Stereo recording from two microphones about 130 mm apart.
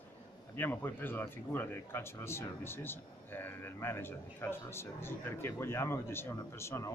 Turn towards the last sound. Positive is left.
turn(degrees=20)  # may be behind; listen again after turning